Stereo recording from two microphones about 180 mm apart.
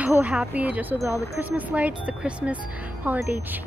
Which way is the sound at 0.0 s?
10° right (ahead or behind).